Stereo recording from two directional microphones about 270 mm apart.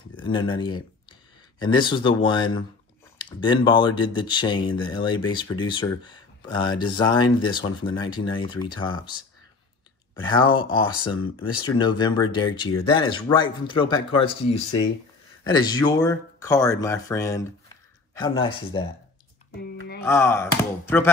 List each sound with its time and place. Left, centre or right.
0.1 s speech: centre
10.2 s speech: centre
20.0 s speech: centre